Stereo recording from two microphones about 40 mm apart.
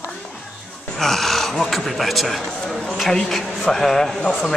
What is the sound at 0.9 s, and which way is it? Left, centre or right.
Speech, centre.